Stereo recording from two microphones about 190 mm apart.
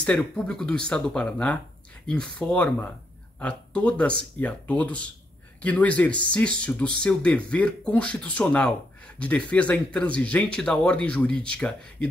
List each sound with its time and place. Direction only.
0.0 s speech: 5° left (ahead or behind)